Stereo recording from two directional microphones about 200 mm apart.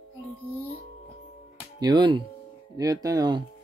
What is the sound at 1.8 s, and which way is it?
Speech, 25° right (ahead or behind).